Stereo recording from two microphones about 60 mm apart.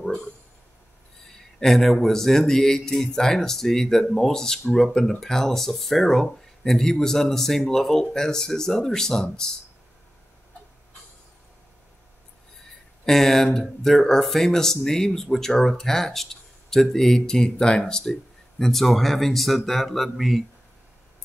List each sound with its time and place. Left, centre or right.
1.2 s a sound: centre
3.2 s speech: centre
13.0 s speech: centre